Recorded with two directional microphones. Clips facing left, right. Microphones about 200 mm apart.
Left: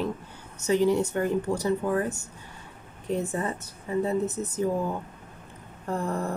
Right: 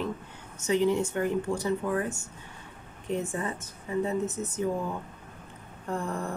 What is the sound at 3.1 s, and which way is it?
Speech, 35° left (ahead or behind).